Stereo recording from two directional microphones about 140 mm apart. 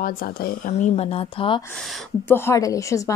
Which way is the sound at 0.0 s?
90° left.